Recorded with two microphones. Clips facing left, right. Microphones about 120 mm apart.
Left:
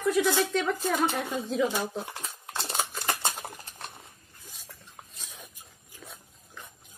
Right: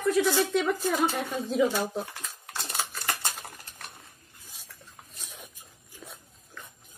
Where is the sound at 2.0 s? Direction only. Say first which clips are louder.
Left 3 dB; 25° left (ahead or behind).